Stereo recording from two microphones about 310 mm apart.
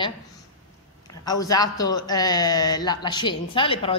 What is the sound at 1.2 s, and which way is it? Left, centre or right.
A woman's voice, centre.